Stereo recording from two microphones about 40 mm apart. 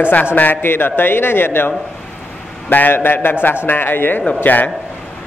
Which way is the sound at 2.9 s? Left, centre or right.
Left.